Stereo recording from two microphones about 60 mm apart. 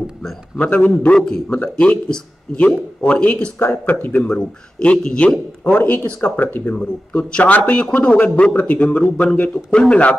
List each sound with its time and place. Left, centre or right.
0.6 s a man's voice: left
1.1 s a man's voice: centre
3.5 s speech: left
4.3 s a man's voice: centre
5.8 s speech: left
6.8 s a man's voice: centre